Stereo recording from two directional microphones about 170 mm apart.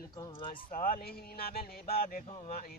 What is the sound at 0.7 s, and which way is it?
Speech, 55° left (ahead or behind).